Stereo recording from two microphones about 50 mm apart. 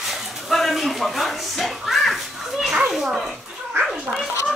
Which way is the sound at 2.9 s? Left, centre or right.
Centre.